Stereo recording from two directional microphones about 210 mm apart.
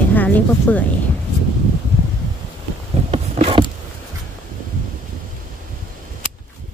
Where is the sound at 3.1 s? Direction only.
30° right (ahead or behind).